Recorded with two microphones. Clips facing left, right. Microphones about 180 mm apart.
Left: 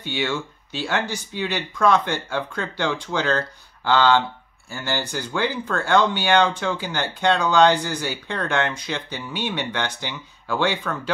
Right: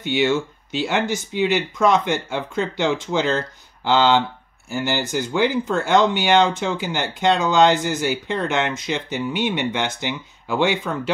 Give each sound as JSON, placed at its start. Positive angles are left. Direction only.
{"t": 0.0, "sound": "speech", "side_deg": -20}